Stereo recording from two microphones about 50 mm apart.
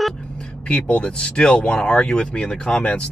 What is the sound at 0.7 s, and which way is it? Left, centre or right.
Speech, left.